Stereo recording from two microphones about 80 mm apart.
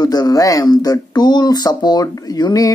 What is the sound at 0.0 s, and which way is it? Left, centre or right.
Speech, left.